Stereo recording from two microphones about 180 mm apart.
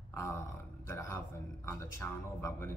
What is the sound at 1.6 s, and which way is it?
Speech, 15° left (ahead or behind).